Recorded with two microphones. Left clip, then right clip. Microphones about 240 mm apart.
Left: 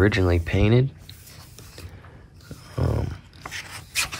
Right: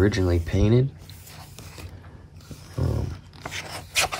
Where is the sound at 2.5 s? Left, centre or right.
Centre.